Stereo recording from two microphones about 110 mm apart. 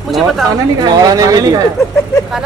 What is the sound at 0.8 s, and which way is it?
Speech, 35° right (ahead or behind).